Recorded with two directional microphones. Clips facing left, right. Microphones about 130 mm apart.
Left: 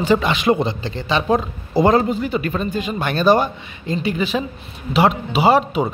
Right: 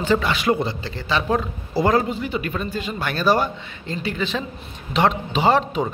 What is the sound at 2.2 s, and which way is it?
Speech, 40° left (ahead or behind).